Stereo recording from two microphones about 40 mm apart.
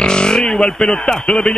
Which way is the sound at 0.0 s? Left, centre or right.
Centre.